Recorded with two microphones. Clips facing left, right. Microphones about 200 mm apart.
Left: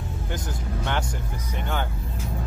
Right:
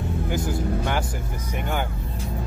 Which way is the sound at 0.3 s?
10° right (ahead or behind).